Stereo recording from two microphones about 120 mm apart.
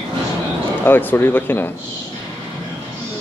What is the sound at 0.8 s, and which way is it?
Speech, 15° left (ahead or behind).